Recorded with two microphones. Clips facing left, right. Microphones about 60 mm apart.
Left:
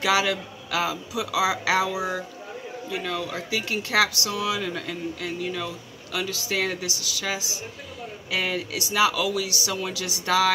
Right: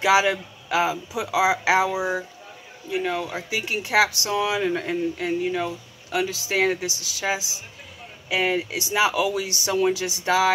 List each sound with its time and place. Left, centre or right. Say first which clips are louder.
0.0 s speech: right 4 dB; right